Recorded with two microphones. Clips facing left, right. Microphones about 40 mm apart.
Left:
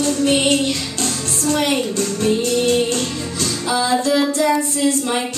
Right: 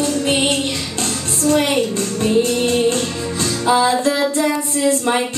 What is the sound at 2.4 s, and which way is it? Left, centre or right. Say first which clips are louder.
Music: right 4 dB; right.